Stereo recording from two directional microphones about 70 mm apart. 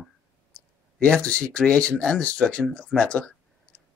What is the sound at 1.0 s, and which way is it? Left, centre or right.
Speech, centre.